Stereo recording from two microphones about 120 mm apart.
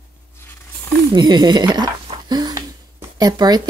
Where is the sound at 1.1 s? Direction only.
40° right (ahead or behind).